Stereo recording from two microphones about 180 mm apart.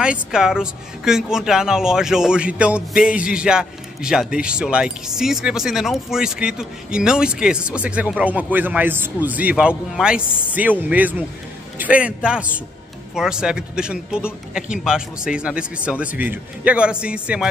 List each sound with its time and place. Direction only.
0.0 s a woman's voice: 5° right (ahead or behind)